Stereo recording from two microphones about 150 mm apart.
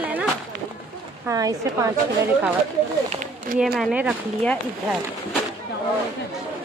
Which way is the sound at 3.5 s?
70° right (ahead or behind).